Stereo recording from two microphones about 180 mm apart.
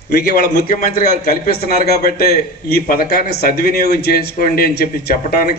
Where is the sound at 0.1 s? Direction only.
50° left (ahead or behind).